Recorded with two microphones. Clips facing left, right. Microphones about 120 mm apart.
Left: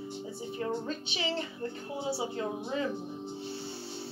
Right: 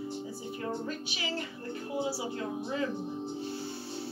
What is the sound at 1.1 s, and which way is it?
Speech, 25° left (ahead or behind).